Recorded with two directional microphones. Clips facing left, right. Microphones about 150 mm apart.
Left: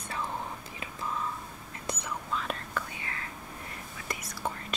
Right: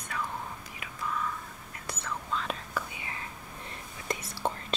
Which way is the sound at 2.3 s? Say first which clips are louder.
Even; centre (ahead or behind).